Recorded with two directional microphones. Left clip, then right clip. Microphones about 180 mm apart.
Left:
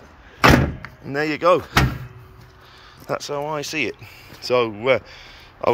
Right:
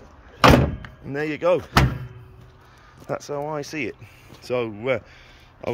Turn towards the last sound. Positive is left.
turn(degrees=-10)  # may be behind; listen again after turning